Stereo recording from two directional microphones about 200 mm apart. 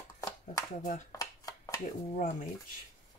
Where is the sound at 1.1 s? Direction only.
15° left (ahead or behind).